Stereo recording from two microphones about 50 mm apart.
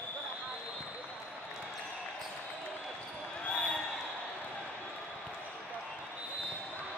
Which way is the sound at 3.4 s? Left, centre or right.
Centre.